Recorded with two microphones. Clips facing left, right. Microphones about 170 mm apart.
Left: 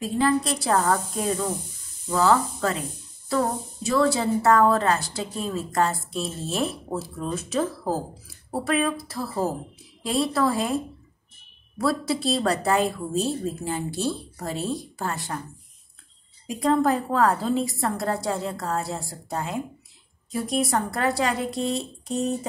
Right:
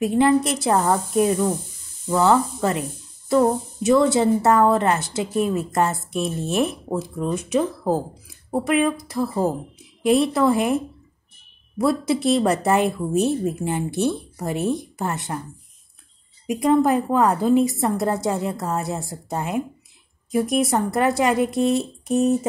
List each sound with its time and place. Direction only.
0.0 s a woman's voice: 20° right (ahead or behind)
11.8 s a woman's voice: 20° right (ahead or behind)
16.5 s a woman's voice: 20° right (ahead or behind)